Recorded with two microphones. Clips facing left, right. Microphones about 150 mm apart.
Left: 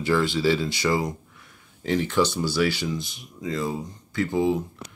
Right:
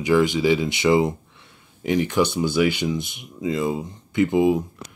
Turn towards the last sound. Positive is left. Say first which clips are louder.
# right 5 dB
turn(degrees=-15)  # may be behind; listen again after turning